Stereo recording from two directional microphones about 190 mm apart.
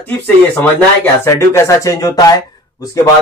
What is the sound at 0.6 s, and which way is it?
A man's voice, 10° left (ahead or behind).